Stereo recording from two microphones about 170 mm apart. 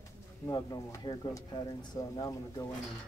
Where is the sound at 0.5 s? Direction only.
20° left (ahead or behind).